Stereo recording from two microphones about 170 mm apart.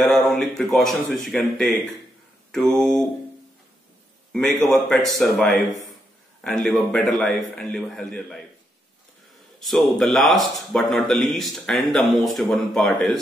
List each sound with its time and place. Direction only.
0.0 s a man's voice: centre (ahead or behind)
4.3 s a man's voice: centre (ahead or behind)
9.6 s a man's voice: centre (ahead or behind)